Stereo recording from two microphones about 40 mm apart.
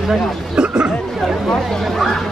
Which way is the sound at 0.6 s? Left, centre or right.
Right.